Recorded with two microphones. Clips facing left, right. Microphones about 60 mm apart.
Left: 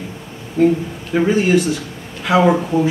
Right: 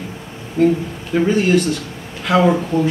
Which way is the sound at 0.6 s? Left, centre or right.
Centre.